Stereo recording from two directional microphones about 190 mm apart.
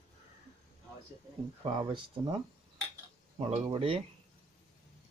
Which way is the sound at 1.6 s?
25° right (ahead or behind).